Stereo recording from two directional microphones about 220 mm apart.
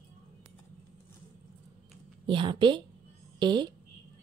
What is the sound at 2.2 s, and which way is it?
A woman's voice, 20° right (ahead or behind).